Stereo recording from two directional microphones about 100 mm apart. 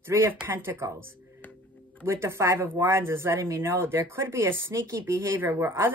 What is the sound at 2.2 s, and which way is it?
Speech, 25° right (ahead or behind).